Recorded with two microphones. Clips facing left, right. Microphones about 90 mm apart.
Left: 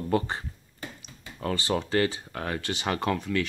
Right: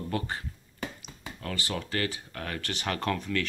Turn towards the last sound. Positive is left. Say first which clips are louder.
# left 3 dB
turn(degrees=15)  # may be behind; listen again after turning